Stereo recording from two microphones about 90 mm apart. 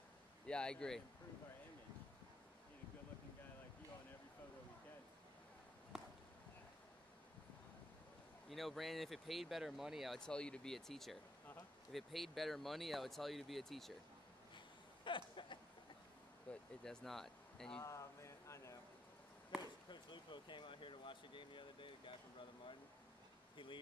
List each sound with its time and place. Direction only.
0.5 s speech: 10° left (ahead or behind)
5.9 s a sound: 5° right (ahead or behind)
8.5 s speech: centre (ahead or behind)
15.0 s a sound: 65° left (ahead or behind)
16.5 s vehicle: 15° left (ahead or behind)
16.8 s speech: 5° left (ahead or behind)
17.8 s a sound: 35° left (ahead or behind)
19.9 s speech: 60° left (ahead or behind)
23.5 s speech: 65° left (ahead or behind)